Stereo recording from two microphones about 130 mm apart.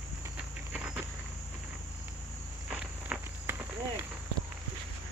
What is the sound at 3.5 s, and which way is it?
Cricket, 15° right (ahead or behind).